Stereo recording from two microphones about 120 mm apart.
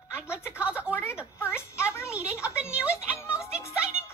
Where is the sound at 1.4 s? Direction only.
20° left (ahead or behind).